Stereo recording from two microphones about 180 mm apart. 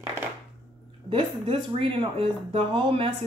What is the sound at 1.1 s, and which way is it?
Speech, 30° right (ahead or behind).